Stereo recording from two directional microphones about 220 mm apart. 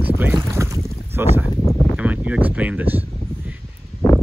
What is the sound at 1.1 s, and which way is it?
Speech, 10° right (ahead or behind).